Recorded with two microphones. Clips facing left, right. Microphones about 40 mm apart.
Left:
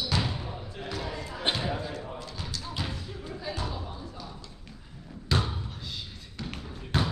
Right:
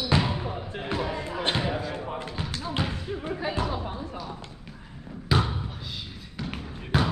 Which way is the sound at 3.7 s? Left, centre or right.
Right.